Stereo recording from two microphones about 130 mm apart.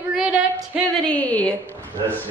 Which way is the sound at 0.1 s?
5° right (ahead or behind).